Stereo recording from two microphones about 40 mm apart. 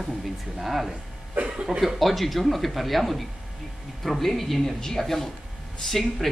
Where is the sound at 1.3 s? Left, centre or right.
Right.